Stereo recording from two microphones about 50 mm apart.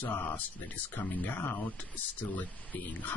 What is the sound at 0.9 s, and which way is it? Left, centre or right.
Speech, left.